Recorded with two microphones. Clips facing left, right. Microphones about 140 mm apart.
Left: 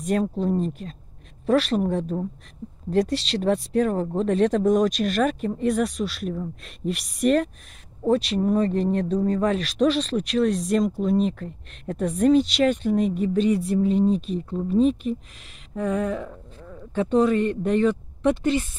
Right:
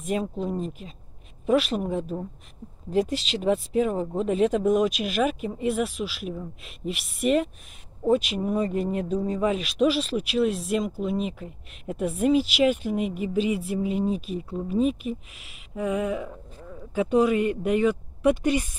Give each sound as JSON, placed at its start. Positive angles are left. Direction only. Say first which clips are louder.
{"t": 0.0, "sound": "speech", "louder": "left 4 dB", "side_deg": -5}